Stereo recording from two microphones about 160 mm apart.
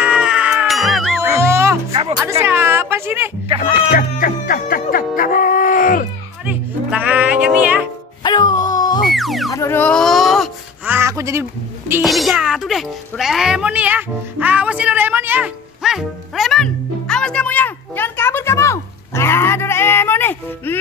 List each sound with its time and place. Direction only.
0.0 s cat: 5° right (ahead or behind)
1.2 s music: 20° right (ahead or behind)
1.9 s music: 35° right (ahead or behind)
2.4 s a sound: 15° right (ahead or behind)
3.9 s music: 60° left (ahead or behind)
6.4 s music: 10° right (ahead or behind)
8.2 s dog: 25° left (ahead or behind)
9.0 s music: centre (ahead or behind)
9.5 s music: 15° left (ahead or behind); by 10.5 s centre (ahead or behind)
10.9 s a sound: 15° right (ahead or behind)
12.0 s a child's voice: centre (ahead or behind)